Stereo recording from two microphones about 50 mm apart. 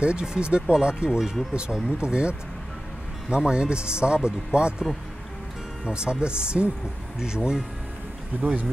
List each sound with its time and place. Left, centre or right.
0.0 s speech: centre
5.9 s speech: centre
8.4 s speech: right